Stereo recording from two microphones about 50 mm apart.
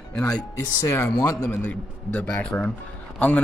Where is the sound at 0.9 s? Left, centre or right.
Left.